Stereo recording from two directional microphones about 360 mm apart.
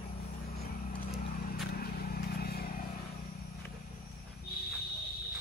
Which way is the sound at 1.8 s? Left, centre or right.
Left.